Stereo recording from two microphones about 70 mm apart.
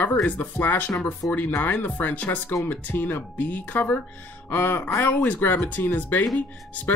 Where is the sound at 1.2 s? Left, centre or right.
Left.